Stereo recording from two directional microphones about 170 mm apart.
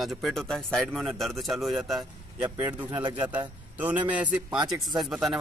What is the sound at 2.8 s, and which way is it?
Speech, 25° right (ahead or behind).